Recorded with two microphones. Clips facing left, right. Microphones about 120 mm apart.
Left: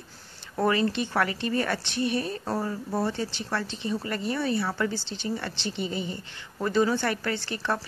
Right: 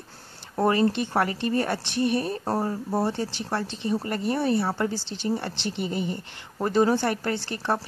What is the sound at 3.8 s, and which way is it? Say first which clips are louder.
Speech: right 3 dB; 50° right (ahead or behind).